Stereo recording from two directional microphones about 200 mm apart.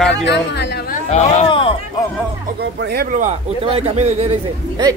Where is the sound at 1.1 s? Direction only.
35° left (ahead or behind).